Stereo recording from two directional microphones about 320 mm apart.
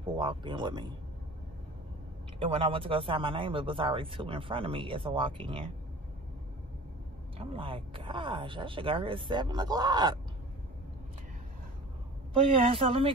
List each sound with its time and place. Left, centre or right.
0.0 s speech: centre
2.3 s speech: centre
7.3 s speech: centre
12.4 s speech: centre